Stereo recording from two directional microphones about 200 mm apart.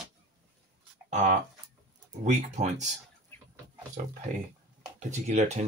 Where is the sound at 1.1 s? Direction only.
35° right (ahead or behind).